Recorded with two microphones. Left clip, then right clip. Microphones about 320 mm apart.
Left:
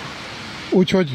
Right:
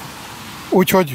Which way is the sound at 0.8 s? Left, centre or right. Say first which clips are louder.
Right 4 dB; right.